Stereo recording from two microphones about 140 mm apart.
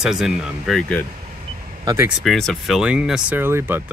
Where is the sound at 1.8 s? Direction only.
25° right (ahead or behind).